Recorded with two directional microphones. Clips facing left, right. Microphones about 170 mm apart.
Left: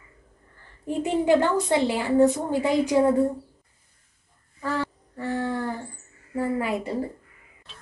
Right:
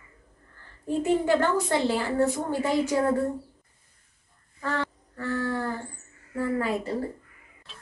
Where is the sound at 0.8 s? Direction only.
15° left (ahead or behind).